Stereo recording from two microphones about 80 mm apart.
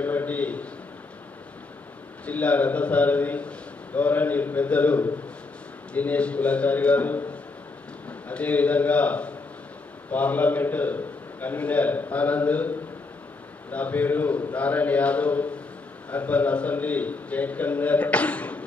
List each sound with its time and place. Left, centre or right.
0.0 s a sound: left
2.2 s a man's voice: centre
8.3 s a man's voice: centre